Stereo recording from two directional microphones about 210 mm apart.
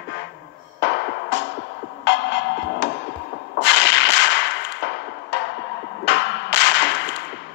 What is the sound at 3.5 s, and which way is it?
Whip, 60° left (ahead or behind).